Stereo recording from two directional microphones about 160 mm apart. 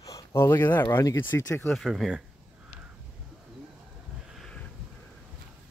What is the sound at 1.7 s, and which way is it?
Speech, centre (ahead or behind).